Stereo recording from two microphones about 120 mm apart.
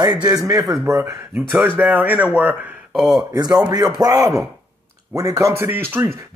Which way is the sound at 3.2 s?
35° right (ahead or behind).